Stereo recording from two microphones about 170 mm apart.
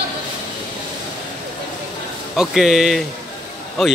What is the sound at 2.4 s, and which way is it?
Speech, centre (ahead or behind).